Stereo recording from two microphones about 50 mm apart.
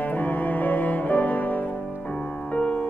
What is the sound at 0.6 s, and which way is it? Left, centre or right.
Cello, left.